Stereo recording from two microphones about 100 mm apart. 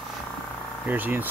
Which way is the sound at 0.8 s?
20° right (ahead or behind).